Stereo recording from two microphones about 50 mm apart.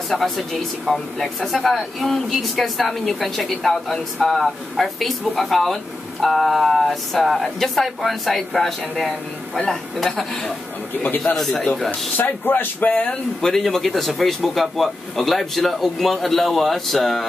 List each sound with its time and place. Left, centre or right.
0.1 s speech: centre
11.0 s speech: left
11.3 s speech: centre
12.2 s speech: left
13.4 s speech: centre